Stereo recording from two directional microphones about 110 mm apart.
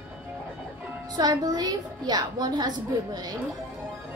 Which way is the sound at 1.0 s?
35° right (ahead or behind).